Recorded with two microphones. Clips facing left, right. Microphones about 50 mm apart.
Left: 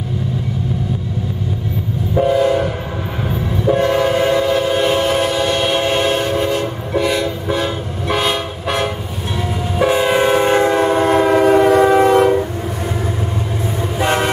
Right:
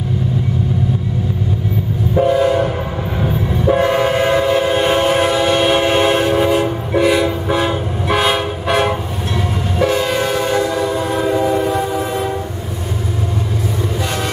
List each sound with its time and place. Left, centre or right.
2.1 s train: centre
9.8 s train: centre; by 12.4 s left
14.0 s train: left